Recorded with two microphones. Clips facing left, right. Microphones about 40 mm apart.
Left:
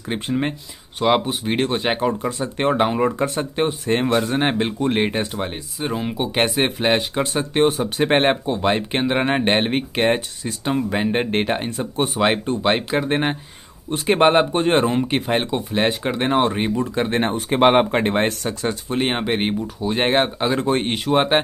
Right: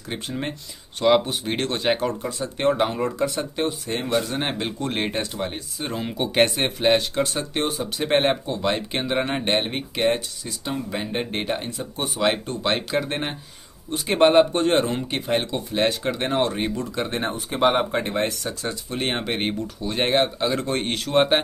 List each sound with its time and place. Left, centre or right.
0.1 s speech: left
2.2 s speech: left
7.6 s speech: left
17.1 s speech: left
18.9 s speech: centre